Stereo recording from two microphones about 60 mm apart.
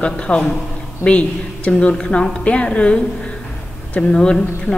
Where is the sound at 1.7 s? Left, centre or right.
Centre.